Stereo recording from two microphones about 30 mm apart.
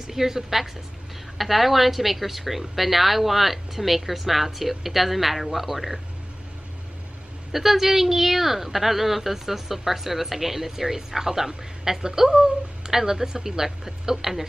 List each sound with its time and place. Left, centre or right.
0.0 s a woman's voice: centre
7.5 s a woman's voice: centre